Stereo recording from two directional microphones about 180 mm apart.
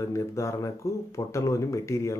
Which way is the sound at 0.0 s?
15° left (ahead or behind).